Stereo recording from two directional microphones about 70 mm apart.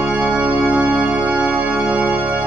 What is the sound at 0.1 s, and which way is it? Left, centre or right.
Music, centre.